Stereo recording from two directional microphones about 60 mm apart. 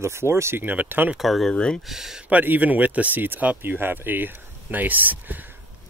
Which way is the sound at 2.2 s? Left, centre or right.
Right.